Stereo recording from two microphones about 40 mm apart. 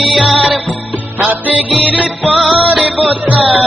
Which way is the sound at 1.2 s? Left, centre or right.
Right.